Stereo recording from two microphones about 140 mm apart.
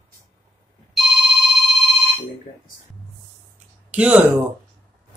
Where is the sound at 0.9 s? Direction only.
Centre (ahead or behind).